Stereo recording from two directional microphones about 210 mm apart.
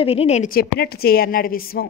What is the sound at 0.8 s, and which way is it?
A woman's voice, 50° left (ahead or behind).